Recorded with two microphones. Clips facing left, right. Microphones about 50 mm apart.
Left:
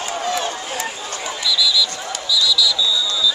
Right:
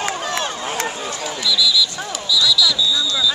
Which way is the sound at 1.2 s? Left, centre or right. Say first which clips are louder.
Even; centre.